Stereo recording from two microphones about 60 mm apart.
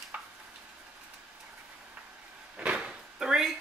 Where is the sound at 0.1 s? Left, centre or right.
Centre.